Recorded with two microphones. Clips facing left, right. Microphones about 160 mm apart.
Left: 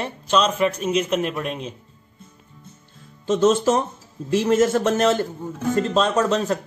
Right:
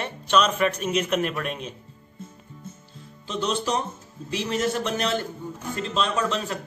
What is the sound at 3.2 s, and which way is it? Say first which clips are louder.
Speech: left 10 dB; 45° left (ahead or behind).